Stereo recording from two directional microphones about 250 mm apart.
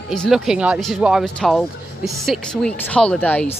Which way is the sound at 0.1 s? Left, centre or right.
Centre.